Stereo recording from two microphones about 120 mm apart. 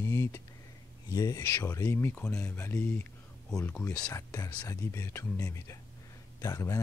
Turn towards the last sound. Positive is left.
turn(degrees=25)  # may be behind; listen again after turning